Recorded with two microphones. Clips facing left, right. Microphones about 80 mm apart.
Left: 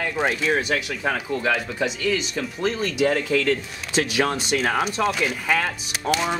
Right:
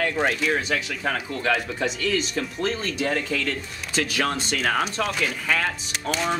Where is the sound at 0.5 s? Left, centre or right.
Centre.